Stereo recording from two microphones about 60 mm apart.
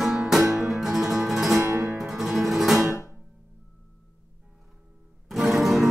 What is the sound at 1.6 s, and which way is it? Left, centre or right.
Music, right.